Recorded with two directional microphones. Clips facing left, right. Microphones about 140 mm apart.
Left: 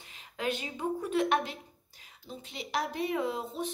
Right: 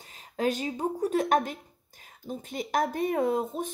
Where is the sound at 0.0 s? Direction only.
40° right (ahead or behind).